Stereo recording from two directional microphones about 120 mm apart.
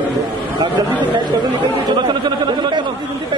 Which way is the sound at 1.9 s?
35° right (ahead or behind).